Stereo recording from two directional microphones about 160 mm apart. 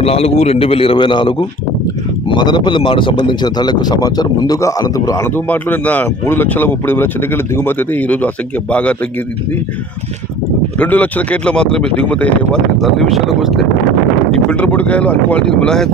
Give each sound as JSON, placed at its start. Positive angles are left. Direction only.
{"t": 0.0, "sound": "a man's voice", "side_deg": 40}
{"t": 10.8, "sound": "speech", "side_deg": 10}